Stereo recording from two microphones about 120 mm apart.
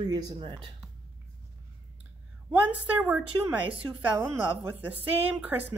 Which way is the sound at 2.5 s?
10° right (ahead or behind).